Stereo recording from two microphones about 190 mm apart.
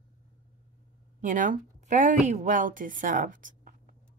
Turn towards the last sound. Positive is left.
turn(degrees=-45)  # may be behind; listen again after turning